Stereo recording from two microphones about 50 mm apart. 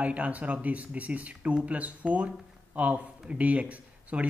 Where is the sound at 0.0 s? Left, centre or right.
Right.